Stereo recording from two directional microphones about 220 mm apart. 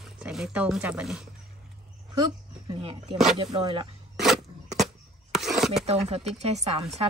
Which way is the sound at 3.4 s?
25° right (ahead or behind).